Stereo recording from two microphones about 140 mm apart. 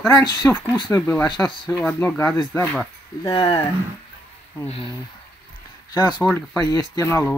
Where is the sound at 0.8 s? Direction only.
10° left (ahead or behind).